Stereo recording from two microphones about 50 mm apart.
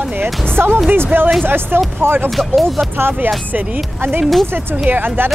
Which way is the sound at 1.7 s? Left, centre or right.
Right.